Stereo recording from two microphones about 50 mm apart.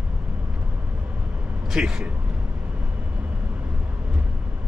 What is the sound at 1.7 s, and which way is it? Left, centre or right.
Speech, centre.